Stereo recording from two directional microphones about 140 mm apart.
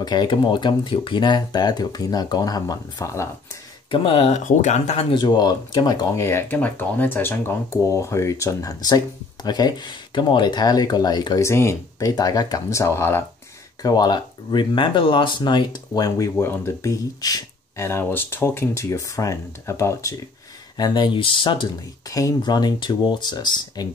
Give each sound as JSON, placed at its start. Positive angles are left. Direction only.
{"t": 0.0, "sound": "speech", "side_deg": 30}
{"t": 3.9, "sound": "speech", "side_deg": 40}
{"t": 4.5, "sound": "speech", "side_deg": 60}
{"t": 5.1, "sound": "speech", "side_deg": 30}
{"t": 13.8, "sound": "speech", "side_deg": 30}
{"t": 20.7, "sound": "speech", "side_deg": 30}